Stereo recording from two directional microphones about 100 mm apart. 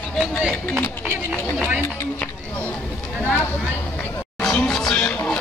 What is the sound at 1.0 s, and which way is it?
Chatter, 20° left (ahead or behind).